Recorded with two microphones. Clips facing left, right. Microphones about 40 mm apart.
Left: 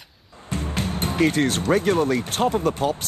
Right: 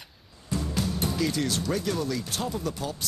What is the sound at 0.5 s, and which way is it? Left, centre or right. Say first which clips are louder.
Speech: left 2 dB; left.